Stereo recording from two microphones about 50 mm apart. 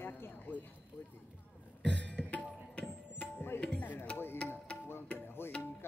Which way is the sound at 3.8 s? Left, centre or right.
Left.